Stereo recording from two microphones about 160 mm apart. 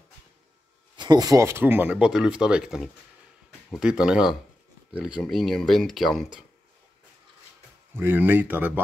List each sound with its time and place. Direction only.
0.9 s speech: 25° right (ahead or behind); by 6.4 s centre (ahead or behind)
7.9 s speech: 15° right (ahead or behind)